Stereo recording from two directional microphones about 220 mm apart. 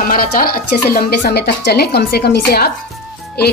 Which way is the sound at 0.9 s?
45° left (ahead or behind).